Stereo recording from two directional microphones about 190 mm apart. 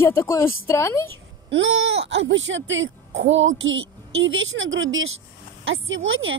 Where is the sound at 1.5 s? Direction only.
75° right (ahead or behind).